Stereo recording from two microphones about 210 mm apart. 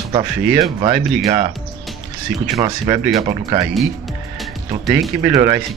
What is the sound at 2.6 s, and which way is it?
Speech, 15° right (ahead or behind).